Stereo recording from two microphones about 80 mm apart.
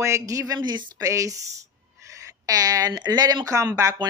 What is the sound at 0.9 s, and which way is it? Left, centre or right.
Speech, right.